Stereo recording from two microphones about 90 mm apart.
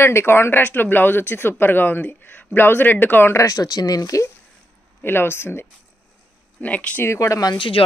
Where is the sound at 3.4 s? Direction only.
40° left (ahead or behind).